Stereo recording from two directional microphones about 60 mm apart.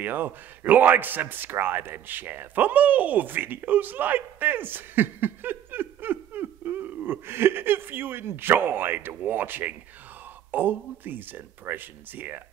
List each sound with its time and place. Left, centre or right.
0.0 s a man's voice: right